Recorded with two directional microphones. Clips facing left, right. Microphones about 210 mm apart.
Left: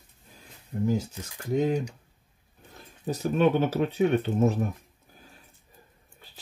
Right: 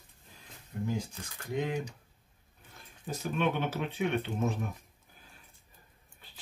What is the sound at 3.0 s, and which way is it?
Speech, 40° left (ahead or behind).